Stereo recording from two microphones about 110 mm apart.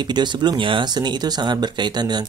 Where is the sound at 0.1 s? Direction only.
40° right (ahead or behind).